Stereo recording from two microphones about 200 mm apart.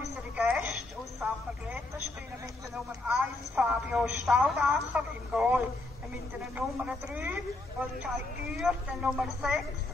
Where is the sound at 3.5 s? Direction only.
5° right (ahead or behind).